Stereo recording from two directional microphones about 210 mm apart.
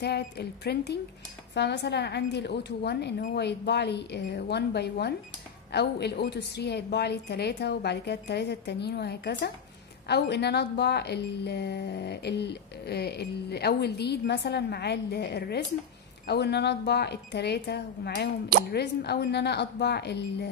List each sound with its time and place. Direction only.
0.0 s a woman's voice: 50° left (ahead or behind)